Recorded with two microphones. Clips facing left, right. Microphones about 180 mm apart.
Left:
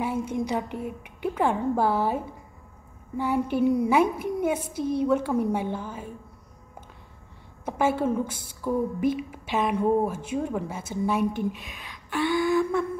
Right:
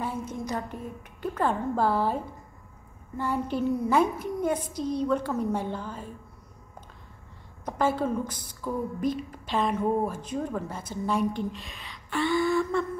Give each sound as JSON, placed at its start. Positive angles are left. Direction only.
{"t": 0.0, "sound": "a sound", "side_deg": 10}
{"t": 0.8, "sound": "speech", "side_deg": 10}
{"t": 4.6, "sound": "a woman's voice", "side_deg": 55}
{"t": 5.0, "sound": "speech", "side_deg": 10}
{"t": 7.6, "sound": "a woman's voice", "side_deg": 10}